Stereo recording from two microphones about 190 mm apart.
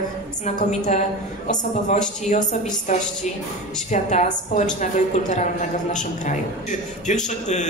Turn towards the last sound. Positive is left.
turn(degrees=40)  # may be behind; listen again after turning